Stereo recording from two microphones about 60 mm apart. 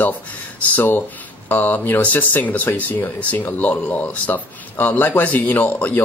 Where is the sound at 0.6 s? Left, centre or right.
Left.